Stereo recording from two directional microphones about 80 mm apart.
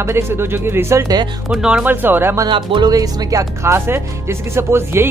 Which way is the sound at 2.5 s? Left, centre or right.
Right.